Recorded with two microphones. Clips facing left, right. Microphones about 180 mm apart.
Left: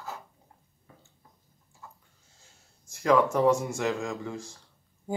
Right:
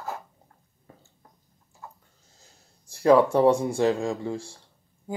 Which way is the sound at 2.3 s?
35° right (ahead or behind).